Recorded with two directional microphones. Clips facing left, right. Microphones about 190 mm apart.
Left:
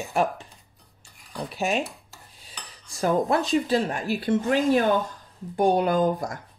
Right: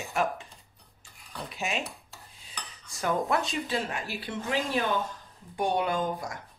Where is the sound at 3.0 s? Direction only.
35° left (ahead or behind).